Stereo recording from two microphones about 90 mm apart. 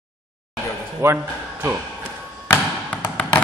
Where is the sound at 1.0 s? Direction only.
25° right (ahead or behind).